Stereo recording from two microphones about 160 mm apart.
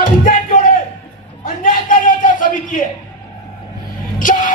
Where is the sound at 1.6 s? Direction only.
55° left (ahead or behind).